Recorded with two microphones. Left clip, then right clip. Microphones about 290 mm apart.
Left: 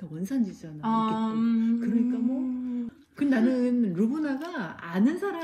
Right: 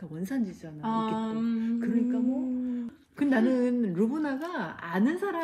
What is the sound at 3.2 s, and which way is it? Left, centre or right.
A woman's voice, right.